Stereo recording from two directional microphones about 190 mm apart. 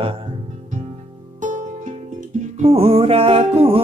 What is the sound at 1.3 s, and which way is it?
Music, 40° right (ahead or behind).